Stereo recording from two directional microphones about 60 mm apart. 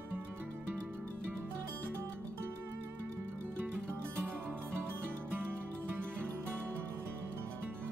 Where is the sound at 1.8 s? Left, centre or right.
Right.